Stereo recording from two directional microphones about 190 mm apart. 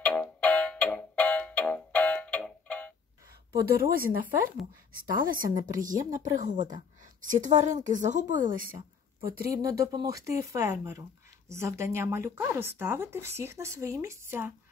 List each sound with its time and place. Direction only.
0.0 s music: 10° left (ahead or behind)
3.6 s a woman's voice: 50° right (ahead or behind)
9.6 s speech: 20° right (ahead or behind)